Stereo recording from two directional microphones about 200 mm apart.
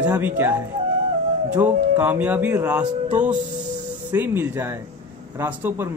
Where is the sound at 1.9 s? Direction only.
10° right (ahead or behind).